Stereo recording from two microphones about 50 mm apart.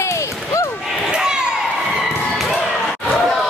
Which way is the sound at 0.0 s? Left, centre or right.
Left.